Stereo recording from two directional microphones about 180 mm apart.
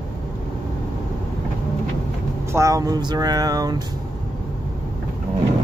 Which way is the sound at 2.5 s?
20° right (ahead or behind).